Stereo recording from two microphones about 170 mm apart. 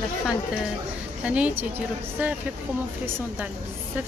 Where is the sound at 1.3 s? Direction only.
10° right (ahead or behind).